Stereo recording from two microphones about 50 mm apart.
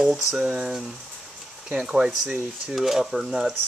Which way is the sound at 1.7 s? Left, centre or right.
Centre.